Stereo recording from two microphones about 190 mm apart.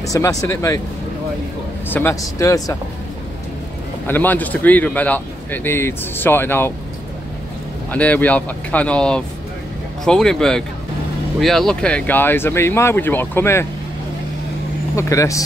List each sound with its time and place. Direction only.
0.0 s speech: 15° left (ahead or behind)
1.9 s speech: 10° left (ahead or behind)
4.1 s speech: 10° left (ahead or behind)
7.9 s speech: 10° left (ahead or behind)
15.0 s speech: 15° left (ahead or behind)